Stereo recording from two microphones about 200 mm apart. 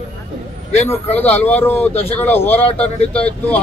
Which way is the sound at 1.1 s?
10° left (ahead or behind).